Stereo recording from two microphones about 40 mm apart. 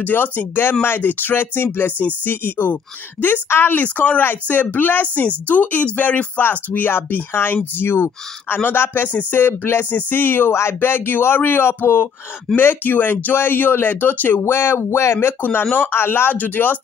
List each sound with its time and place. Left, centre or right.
0.0 s speech: left
3.4 s speech: left
3.7 s speech: left
4.2 s speech: left
5.0 s speech: left
6.5 s speech: left
8.6 s speech: left
12.5 s speech: left
13.3 s speech: left
14.5 s speech: left
16.3 s speech: left